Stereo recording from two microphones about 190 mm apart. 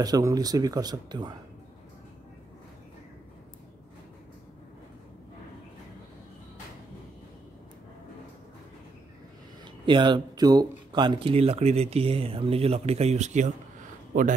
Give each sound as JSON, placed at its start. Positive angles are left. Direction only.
{"t": 0.0, "sound": "speech", "side_deg": -20}
{"t": 9.8, "sound": "speech", "side_deg": -25}